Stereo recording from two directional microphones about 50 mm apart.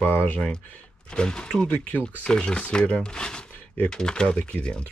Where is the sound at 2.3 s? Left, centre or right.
Centre.